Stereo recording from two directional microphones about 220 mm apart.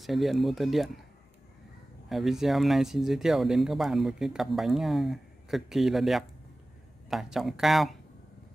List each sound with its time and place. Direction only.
0.0 s speech: centre (ahead or behind)
2.0 s speech: centre (ahead or behind)